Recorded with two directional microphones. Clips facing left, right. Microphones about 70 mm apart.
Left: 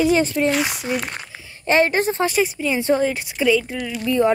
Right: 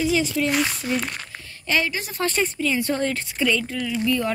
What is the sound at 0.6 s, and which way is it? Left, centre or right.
Speech, centre.